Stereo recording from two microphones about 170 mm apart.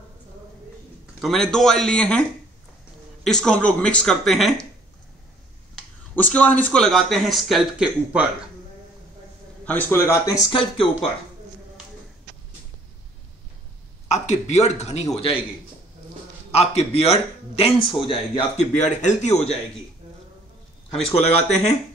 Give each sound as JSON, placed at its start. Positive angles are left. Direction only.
{"t": 1.2, "sound": "speech", "side_deg": 0}
{"t": 3.3, "sound": "speech", "side_deg": 5}
{"t": 6.1, "sound": "speech", "side_deg": 10}
{"t": 9.7, "sound": "a man's voice", "side_deg": 10}
{"t": 10.4, "sound": "speech", "side_deg": 30}
{"t": 14.0, "sound": "speech", "side_deg": 45}
{"t": 16.5, "sound": "speech", "side_deg": 35}
{"t": 18.8, "sound": "a man's voice", "side_deg": 45}
{"t": 20.9, "sound": "speech", "side_deg": 35}